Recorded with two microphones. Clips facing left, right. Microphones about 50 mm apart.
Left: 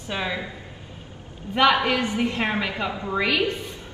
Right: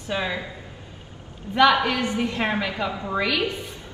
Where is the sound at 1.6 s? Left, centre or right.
Left.